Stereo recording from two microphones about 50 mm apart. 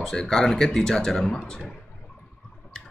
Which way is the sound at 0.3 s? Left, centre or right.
Centre.